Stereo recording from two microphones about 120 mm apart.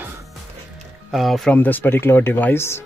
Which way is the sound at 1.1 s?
Centre (ahead or behind).